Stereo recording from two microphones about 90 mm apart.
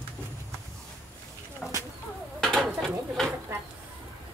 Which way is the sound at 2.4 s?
5° left (ahead or behind).